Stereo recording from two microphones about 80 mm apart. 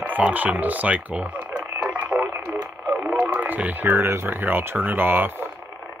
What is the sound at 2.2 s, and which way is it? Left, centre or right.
Radio, right.